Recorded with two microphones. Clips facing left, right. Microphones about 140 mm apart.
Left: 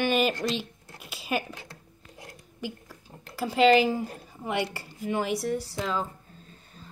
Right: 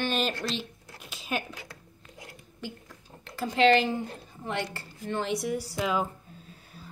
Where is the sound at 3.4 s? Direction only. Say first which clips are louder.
Left 2 dB; 5° left (ahead or behind).